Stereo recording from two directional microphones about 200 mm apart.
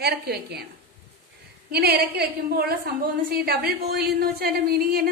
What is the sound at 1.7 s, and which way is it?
A woman's voice, 55° right (ahead or behind).